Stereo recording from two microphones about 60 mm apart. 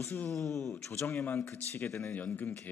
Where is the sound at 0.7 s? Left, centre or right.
Left.